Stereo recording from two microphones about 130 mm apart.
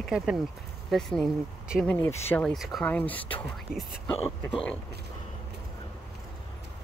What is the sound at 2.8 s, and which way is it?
Speech, 10° left (ahead or behind).